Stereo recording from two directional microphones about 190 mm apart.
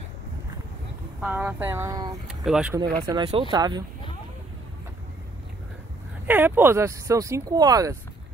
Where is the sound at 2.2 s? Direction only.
5° right (ahead or behind).